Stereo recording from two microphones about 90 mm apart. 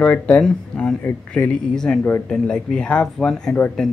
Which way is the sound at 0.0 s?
15° left (ahead or behind).